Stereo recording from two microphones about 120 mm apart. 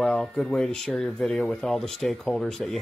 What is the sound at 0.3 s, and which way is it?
Speech, 5° left (ahead or behind).